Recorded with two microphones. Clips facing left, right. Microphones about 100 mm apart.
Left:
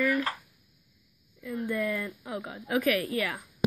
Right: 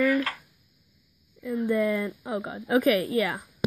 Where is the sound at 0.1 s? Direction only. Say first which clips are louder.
Right 3 dB; 20° left (ahead or behind).